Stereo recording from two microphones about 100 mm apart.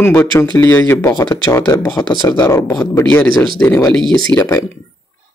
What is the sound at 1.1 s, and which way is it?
Speech, 45° left (ahead or behind).